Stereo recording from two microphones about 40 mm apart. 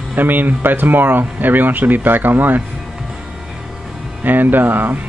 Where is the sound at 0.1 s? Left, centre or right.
Right.